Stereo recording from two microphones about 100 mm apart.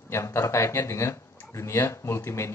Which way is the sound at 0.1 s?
25° left (ahead or behind).